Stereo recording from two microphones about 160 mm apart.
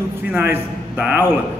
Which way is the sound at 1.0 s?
5° right (ahead or behind).